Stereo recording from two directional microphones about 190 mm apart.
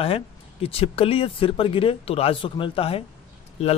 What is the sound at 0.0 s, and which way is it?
Speech, 30° left (ahead or behind).